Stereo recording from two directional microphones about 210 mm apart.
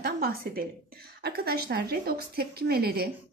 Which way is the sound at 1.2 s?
45° right (ahead or behind).